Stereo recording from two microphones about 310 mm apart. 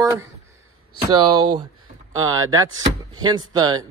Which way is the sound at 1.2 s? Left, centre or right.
Right.